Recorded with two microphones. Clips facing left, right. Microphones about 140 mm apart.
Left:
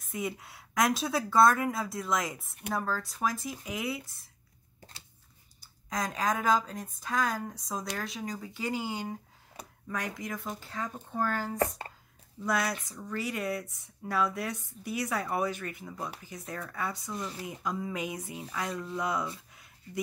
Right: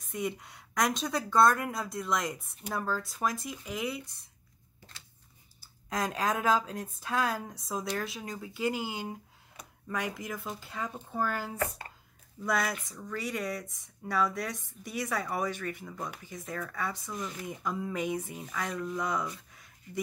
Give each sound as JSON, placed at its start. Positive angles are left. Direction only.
{"t": 0.0, "sound": "speech", "side_deg": 0}
{"t": 5.6, "sound": "speech", "side_deg": -5}
{"t": 11.5, "sound": "speech", "side_deg": 30}
{"t": 12.4, "sound": "speech", "side_deg": 0}
{"t": 17.1, "sound": "speech", "side_deg": 30}
{"t": 17.4, "sound": "speech", "side_deg": 0}
{"t": 19.5, "sound": "a sound", "side_deg": 5}